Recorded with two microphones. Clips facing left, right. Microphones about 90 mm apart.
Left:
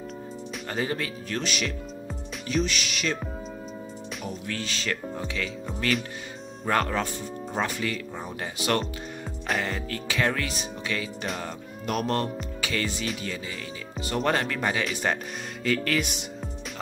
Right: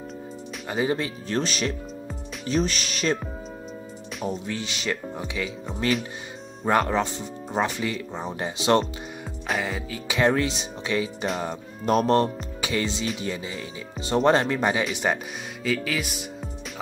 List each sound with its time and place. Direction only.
0.7 s speech: 15° right (ahead or behind)
1.4 s speech: 35° right (ahead or behind)
4.3 s speech: 20° right (ahead or behind)
9.5 s speech: 5° right (ahead or behind); by 11.1 s 20° right (ahead or behind)
11.8 s speech: 30° right (ahead or behind)
14.0 s speech: 25° right (ahead or behind)
15.6 s music: centre (ahead or behind)